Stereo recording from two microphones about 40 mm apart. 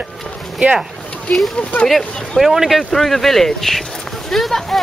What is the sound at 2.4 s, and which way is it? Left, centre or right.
Speech, centre.